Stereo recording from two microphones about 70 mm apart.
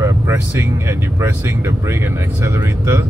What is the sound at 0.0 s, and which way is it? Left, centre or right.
Speech, right.